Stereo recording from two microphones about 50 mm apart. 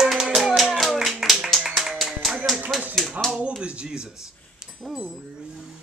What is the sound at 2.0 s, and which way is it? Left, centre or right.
Clapping, centre.